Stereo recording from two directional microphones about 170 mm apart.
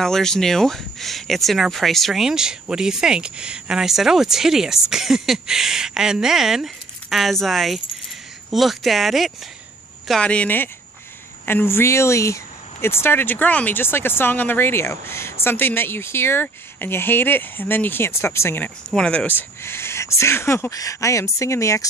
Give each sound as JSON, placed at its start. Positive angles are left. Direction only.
{"t": 0.0, "sound": "speech", "side_deg": 5}